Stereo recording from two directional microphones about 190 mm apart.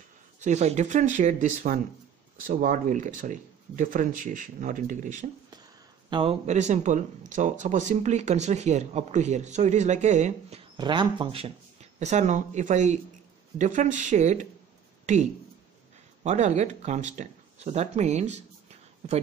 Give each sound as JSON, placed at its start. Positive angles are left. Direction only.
{"t": 0.4, "sound": "speech", "side_deg": -35}
{"t": 6.0, "sound": "speech", "side_deg": -30}
{"t": 10.8, "sound": "speech", "side_deg": -25}
{"t": 16.3, "sound": "speech", "side_deg": -40}